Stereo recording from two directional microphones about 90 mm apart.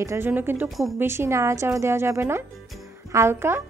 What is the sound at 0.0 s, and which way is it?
Speech, 30° right (ahead or behind).